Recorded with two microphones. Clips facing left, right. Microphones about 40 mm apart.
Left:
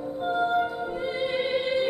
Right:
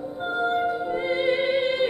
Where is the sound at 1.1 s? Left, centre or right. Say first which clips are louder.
Right 4 dB; right.